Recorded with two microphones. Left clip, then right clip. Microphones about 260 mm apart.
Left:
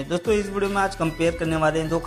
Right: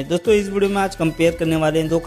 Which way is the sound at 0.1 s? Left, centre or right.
Right.